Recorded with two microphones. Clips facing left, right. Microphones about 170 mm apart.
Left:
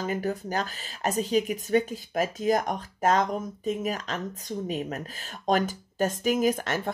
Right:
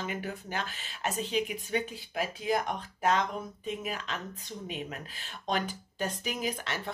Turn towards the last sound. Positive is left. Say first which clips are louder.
# left 9 dB
turn(degrees=45)  # may be behind; listen again after turning